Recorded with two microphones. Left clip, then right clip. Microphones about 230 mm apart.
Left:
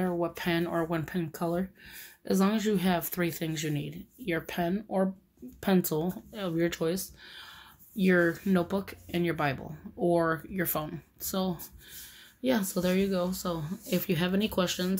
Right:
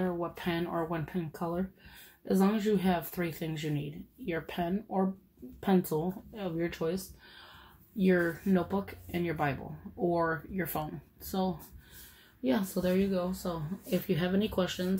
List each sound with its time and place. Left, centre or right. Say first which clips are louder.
0.0 s speech: left 3 dB; left
8.0 s speech: left 3 dB; left